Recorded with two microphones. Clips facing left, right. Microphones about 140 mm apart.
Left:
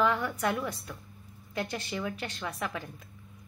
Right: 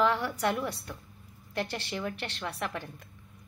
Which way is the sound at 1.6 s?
75° right (ahead or behind).